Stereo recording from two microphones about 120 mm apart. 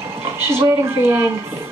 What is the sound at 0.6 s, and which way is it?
Speech, 20° right (ahead or behind).